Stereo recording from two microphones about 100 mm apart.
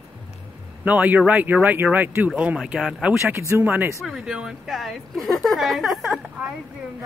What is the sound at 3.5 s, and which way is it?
Speech, 20° right (ahead or behind).